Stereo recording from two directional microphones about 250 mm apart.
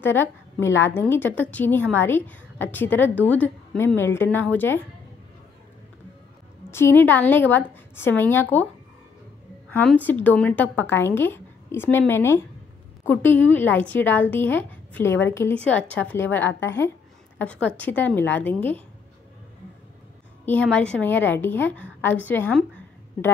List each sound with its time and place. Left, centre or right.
0.0 s a woman's voice: centre
6.7 s a woman's voice: centre
9.7 s a woman's voice: centre
20.4 s a woman's voice: centre